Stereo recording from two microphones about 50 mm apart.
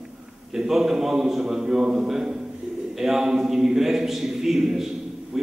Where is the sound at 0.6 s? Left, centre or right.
Centre.